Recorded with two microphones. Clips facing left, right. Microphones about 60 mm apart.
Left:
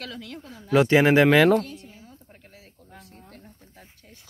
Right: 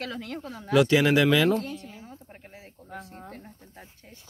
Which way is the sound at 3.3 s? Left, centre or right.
Right.